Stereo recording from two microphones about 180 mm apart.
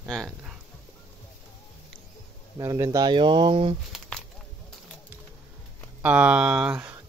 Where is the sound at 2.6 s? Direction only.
15° right (ahead or behind).